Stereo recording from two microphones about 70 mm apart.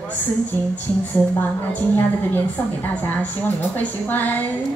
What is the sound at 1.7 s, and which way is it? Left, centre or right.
A woman's voice, left.